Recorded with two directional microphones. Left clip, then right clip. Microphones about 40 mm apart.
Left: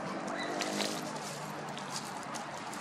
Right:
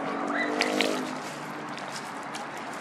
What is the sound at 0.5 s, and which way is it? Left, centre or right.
Vehicle, right.